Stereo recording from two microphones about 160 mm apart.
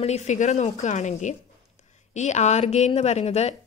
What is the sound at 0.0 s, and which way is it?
A woman's voice, 45° left (ahead or behind).